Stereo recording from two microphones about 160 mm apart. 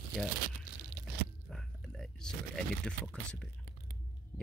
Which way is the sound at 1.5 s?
5° left (ahead or behind).